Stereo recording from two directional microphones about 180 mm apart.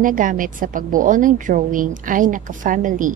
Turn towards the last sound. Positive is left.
turn(degrees=-45)  # may be behind; listen again after turning